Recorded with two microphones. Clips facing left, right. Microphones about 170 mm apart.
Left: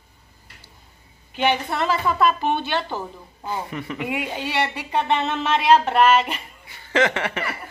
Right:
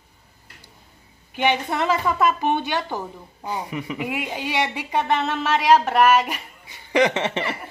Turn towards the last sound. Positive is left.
turn(degrees=-25)  # may be behind; listen again after turning